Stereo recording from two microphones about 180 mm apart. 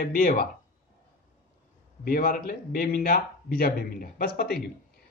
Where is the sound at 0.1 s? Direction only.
50° left (ahead or behind).